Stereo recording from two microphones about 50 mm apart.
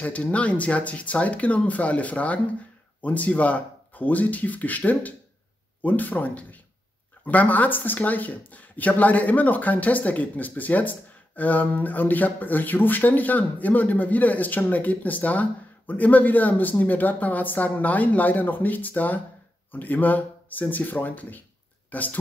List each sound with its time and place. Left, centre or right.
0.0 s speech: left